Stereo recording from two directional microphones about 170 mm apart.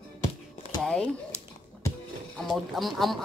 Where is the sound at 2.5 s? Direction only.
Centre (ahead or behind).